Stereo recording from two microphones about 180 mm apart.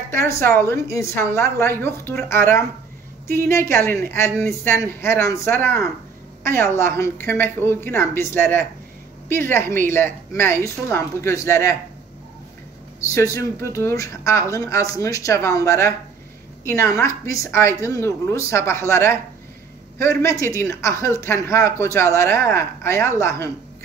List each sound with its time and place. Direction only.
0.1 s speech: 15° left (ahead or behind)
13.0 s speech: 15° left (ahead or behind)